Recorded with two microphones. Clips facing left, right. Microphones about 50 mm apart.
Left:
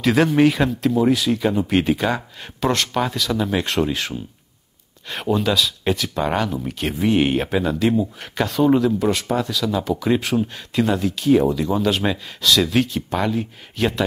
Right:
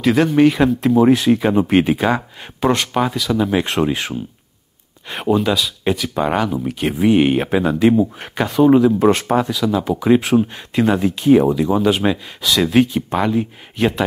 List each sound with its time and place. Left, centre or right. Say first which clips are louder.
0.0 s speech: right 2 dB; centre
0.7 s speech: right 5 dB; right; by 3.6 s centre
3.6 s speech: right 3 dB; right
9.0 s speech: right 6 dB; right
9.5 s speech: right 3 dB; centre